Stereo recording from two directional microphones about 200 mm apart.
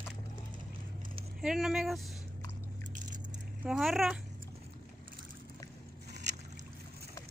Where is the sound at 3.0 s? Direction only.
40° right (ahead or behind).